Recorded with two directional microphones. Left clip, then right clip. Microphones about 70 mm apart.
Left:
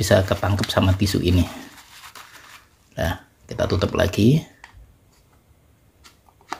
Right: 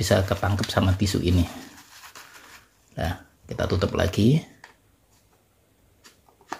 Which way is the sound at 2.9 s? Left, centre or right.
Left.